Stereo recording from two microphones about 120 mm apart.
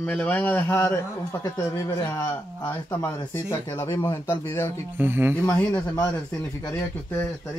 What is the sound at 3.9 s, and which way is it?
Speech, 40° left (ahead or behind).